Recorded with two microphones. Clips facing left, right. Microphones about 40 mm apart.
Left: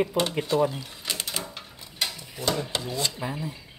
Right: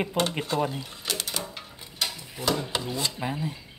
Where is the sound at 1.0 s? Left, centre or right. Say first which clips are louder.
Even; centre.